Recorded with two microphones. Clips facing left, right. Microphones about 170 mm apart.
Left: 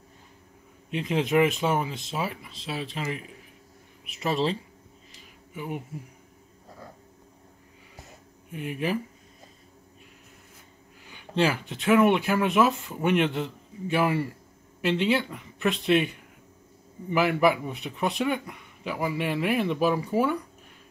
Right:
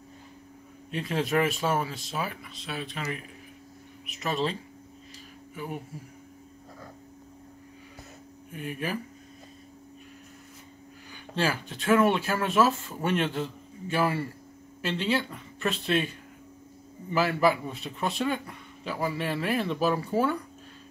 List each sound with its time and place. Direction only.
0.9 s speech: 20° left (ahead or behind)
8.5 s speech: 20° left (ahead or behind)
11.1 s speech: 20° left (ahead or behind)